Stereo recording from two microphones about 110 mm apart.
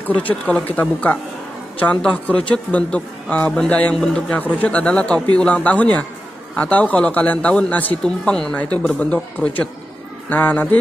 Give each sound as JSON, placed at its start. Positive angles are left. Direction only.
{"t": 0.1, "sound": "a man's voice", "side_deg": 15}